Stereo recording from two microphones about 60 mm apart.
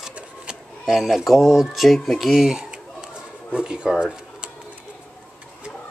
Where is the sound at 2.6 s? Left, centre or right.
Centre.